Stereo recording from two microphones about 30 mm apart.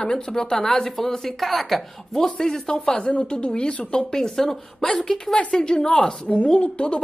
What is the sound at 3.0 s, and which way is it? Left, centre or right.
Speech, left.